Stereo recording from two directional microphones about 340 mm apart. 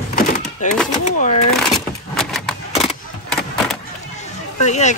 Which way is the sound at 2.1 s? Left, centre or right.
Centre.